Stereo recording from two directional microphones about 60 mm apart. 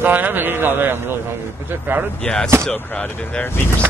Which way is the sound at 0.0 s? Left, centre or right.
Right.